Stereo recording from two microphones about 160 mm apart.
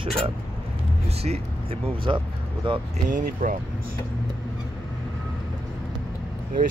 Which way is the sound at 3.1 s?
55° right (ahead or behind).